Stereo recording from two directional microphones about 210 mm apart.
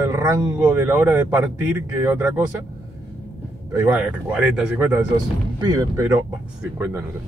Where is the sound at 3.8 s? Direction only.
5° right (ahead or behind).